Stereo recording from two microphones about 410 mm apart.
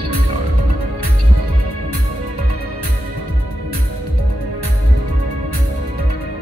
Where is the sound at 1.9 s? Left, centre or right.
Right.